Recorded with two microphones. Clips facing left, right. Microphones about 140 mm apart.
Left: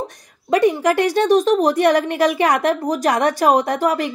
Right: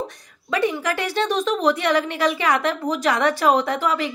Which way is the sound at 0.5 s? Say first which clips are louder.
Left 7 dB; 50° left (ahead or behind).